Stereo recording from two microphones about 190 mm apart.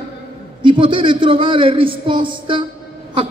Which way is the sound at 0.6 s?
25° right (ahead or behind).